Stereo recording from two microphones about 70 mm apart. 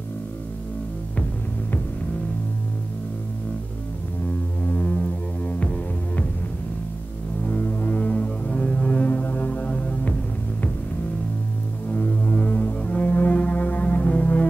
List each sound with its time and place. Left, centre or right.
4.6 s music: left
7.4 s music: centre
11.9 s music: centre